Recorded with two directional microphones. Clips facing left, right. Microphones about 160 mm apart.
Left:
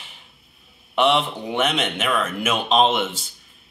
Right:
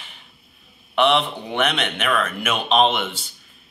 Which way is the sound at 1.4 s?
20° left (ahead or behind).